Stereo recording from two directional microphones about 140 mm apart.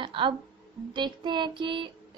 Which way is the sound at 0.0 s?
35° right (ahead or behind).